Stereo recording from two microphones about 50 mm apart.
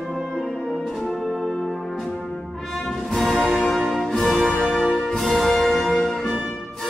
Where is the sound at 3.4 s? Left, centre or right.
Centre.